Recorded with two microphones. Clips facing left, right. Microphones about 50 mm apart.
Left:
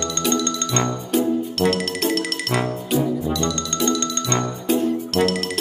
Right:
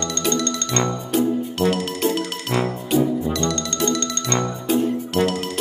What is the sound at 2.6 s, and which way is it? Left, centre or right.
Music, centre.